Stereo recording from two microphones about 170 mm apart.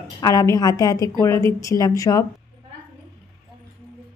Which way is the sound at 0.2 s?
20° left (ahead or behind).